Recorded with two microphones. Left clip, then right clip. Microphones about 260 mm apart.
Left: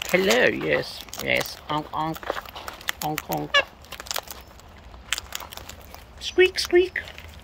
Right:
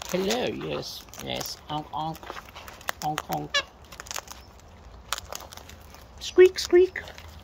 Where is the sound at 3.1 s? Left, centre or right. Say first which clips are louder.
Even; centre.